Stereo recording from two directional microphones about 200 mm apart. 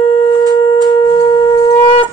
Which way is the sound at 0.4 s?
20° left (ahead or behind).